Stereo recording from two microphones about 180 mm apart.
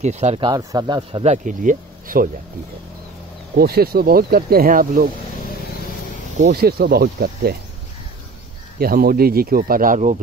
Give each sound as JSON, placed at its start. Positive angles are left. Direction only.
{"t": 0.0, "sound": "speech", "side_deg": -40}
{"t": 0.4, "sound": "speech", "side_deg": -20}
{"t": 1.2, "sound": "speech", "side_deg": -40}
{"t": 3.5, "sound": "speech", "side_deg": -60}
{"t": 6.5, "sound": "speech", "side_deg": -60}
{"t": 8.7, "sound": "speech", "side_deg": -55}